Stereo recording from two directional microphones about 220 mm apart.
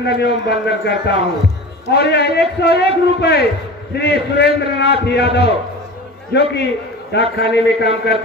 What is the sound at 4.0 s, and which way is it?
A man's voice, 50° left (ahead or behind).